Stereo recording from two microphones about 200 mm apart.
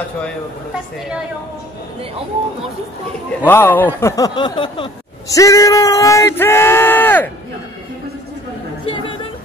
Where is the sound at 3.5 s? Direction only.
10° left (ahead or behind).